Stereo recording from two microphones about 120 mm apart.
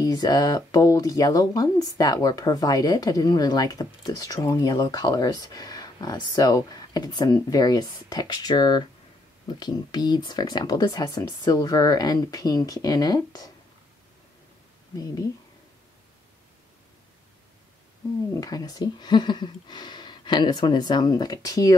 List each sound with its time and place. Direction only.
0.0 s speech: 30° left (ahead or behind)
18.4 s speech: 30° left (ahead or behind)